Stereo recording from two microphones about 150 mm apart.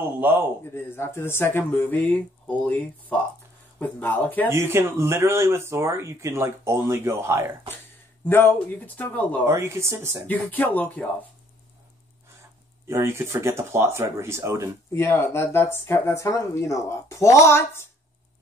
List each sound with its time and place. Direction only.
0.2 s speech: 15° right (ahead or behind)
0.7 s speech: 15° left (ahead or behind)
4.5 s speech: 15° right (ahead or behind)
8.3 s speech: 15° left (ahead or behind)
9.5 s speech: 20° right (ahead or behind)
10.2 s speech: 10° left (ahead or behind)
12.8 s speech: 20° right (ahead or behind)
14.9 s speech: 15° left (ahead or behind)